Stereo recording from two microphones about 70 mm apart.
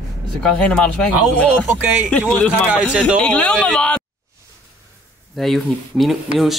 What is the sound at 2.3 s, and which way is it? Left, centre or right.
Speech, left.